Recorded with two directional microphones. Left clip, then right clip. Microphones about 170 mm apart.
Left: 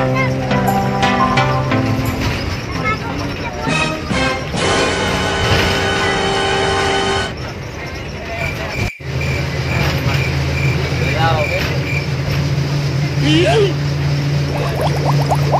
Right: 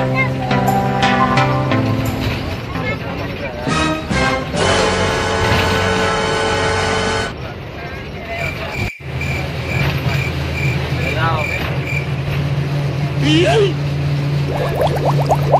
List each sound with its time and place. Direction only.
0.5 s music: centre (ahead or behind)
3.6 s music: centre (ahead or behind)
13.2 s vehicle: centre (ahead or behind)